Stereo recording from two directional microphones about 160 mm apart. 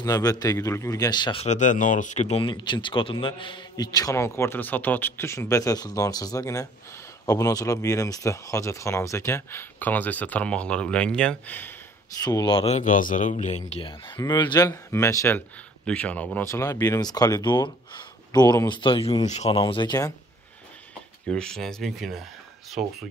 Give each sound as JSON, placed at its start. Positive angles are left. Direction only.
{"t": 0.0, "sound": "a man's voice", "side_deg": 20}
{"t": 12.2, "sound": "a man's voice", "side_deg": 25}
{"t": 21.3, "sound": "speech", "side_deg": 5}